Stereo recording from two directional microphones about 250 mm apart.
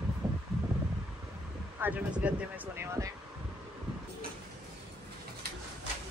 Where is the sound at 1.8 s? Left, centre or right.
Centre.